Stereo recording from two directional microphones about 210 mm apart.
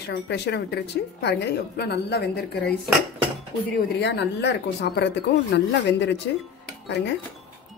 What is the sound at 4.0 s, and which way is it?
Speech, 55° left (ahead or behind).